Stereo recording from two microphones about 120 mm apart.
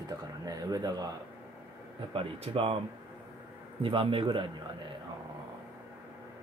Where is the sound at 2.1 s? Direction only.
50° right (ahead or behind).